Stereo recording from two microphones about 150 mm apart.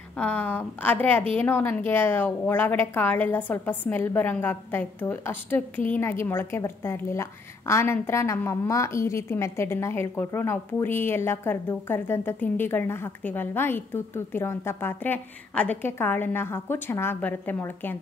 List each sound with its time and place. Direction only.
0.2 s a woman's voice: 10° left (ahead or behind)